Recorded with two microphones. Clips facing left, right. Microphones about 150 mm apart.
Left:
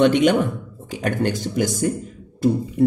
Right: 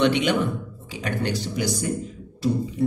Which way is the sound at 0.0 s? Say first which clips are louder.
Left 5 dB; 45° left (ahead or behind).